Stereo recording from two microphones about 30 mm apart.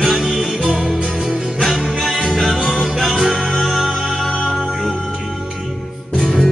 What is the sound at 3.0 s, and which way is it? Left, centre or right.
Music, right.